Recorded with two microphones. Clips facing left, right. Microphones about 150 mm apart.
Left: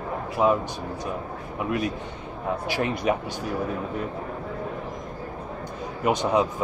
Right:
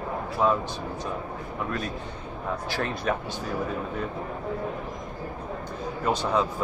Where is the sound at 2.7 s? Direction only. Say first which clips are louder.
Left 4 dB; 15° left (ahead or behind).